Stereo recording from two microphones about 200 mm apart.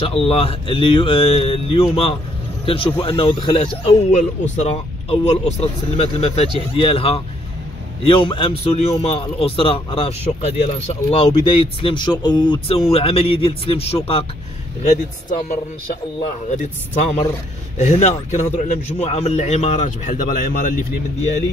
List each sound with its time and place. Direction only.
0.0 s a man's voice: 30° left (ahead or behind)
17.7 s a man's voice: 35° left (ahead or behind)